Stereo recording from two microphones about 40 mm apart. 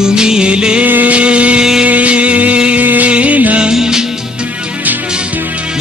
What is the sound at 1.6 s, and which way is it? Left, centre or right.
Music of bollywood, centre.